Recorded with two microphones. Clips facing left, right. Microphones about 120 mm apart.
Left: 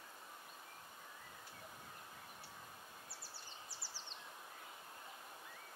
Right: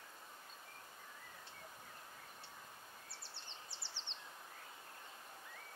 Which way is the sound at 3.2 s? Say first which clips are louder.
Left 1 dB; 25° right (ahead or behind).